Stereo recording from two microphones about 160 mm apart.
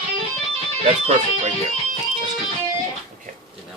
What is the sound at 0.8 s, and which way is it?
Music, 40° right (ahead or behind).